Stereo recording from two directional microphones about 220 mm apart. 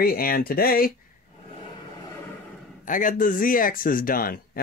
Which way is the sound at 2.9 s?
35° left (ahead or behind).